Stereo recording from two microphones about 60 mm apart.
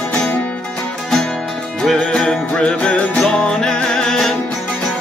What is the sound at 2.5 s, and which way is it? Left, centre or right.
Music, left.